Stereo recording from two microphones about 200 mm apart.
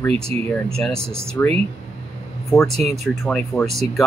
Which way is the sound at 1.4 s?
10° left (ahead or behind).